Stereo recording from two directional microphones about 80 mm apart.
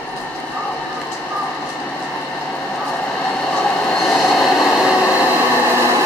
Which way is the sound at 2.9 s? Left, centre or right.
Centre.